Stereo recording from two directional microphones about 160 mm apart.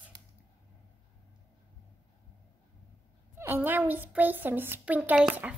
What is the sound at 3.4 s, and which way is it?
Speech, 10° right (ahead or behind).